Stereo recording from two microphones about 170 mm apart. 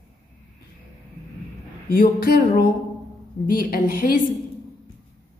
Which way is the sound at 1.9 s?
60° left (ahead or behind).